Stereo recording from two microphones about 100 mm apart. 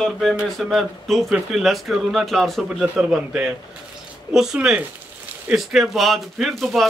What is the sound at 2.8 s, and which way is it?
A man's voice, 10° right (ahead or behind).